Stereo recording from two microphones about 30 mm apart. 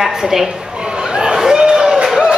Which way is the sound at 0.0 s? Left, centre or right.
Centre.